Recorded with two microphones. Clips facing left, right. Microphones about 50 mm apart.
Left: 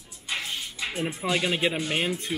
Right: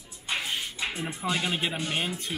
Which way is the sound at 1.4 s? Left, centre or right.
Centre.